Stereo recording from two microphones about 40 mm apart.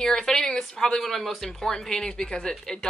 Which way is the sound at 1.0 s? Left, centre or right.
Centre.